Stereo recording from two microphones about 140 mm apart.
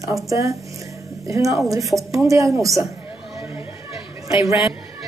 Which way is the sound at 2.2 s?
20° right (ahead or behind).